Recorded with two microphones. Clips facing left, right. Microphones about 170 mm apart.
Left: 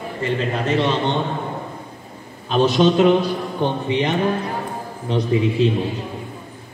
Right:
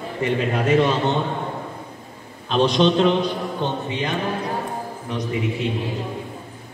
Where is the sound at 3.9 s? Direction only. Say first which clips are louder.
Left 5 dB; 20° left (ahead or behind).